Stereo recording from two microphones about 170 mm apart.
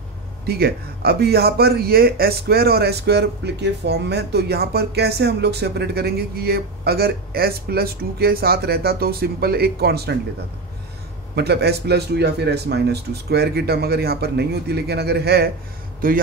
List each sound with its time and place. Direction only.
0.5 s speech: 65° right (ahead or behind)
11.3 s speech: 70° right (ahead or behind)
16.0 s a man's voice: 55° right (ahead or behind)